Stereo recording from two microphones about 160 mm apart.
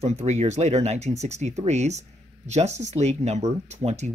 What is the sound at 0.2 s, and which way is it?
Speech, 40° right (ahead or behind).